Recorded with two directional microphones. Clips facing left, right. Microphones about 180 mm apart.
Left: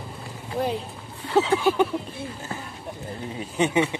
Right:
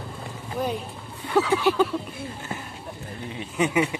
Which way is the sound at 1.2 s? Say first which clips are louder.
Left 1 dB; 25° left (ahead or behind).